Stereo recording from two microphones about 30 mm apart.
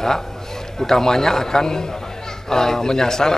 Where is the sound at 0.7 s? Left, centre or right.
Centre.